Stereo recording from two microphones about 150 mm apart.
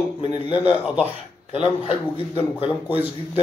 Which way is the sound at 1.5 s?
35° left (ahead or behind).